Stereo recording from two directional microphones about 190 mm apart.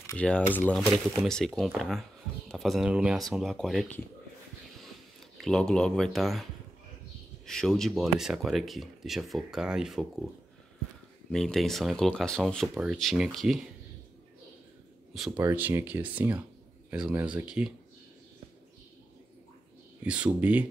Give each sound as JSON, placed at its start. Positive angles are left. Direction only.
{"t": 0.0, "sound": "speech", "side_deg": 5}
{"t": 5.4, "sound": "speech", "side_deg": 5}
{"t": 7.4, "sound": "speech", "side_deg": 0}
{"t": 11.3, "sound": "speech", "side_deg": 0}
{"t": 15.1, "sound": "speech", "side_deg": -5}
{"t": 20.0, "sound": "speech", "side_deg": -5}